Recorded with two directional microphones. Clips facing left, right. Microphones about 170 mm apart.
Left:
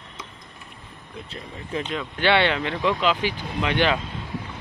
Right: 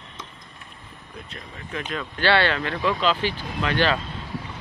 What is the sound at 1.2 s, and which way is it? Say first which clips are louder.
Speech: left 3 dB; 30° left (ahead or behind).